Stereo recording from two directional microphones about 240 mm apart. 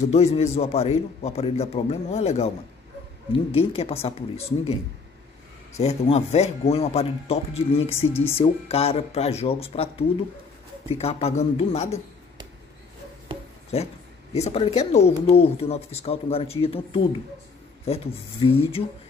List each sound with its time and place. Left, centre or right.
0.0 s a man's voice: left
3.5 s a man's voice: left
5.8 s a man's voice: left
13.7 s a man's voice: left